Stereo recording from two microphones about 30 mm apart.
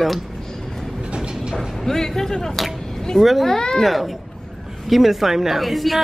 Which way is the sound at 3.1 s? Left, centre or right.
Centre.